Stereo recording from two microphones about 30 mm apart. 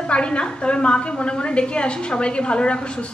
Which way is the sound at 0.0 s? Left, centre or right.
Left.